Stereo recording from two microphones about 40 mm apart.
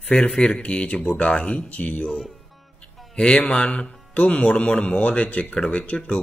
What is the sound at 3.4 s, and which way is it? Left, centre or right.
A man's voice, left.